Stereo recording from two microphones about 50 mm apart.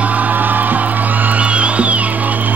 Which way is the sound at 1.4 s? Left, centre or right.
Right.